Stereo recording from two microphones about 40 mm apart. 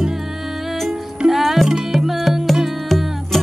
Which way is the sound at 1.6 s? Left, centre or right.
Centre.